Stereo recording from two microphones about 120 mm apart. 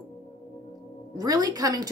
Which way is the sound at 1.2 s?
30° right (ahead or behind).